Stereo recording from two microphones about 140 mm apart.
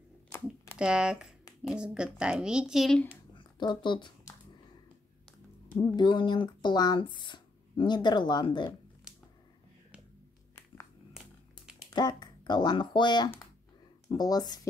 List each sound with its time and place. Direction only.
0.7 s a woman's voice: 5° right (ahead or behind)
3.3 s speech: 35° left (ahead or behind)
5.9 s speech: 35° left (ahead or behind)
11.9 s speech: 30° left (ahead or behind)